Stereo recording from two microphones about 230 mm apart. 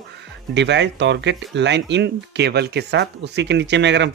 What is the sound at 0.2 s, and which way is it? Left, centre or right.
Speech, right.